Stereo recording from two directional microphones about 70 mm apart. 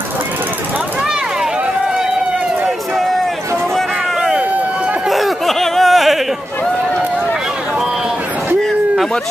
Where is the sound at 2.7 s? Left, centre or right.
Centre.